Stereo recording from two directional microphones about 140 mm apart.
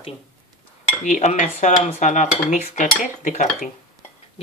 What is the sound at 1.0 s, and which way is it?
Dishes, 55° left (ahead or behind).